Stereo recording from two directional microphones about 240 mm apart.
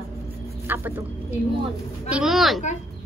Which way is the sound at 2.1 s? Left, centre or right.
Centre.